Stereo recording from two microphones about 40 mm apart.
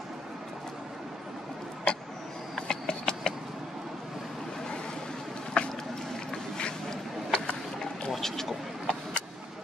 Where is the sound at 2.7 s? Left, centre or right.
Left.